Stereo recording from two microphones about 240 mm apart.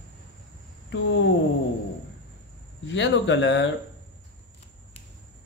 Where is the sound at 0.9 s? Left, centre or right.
Left.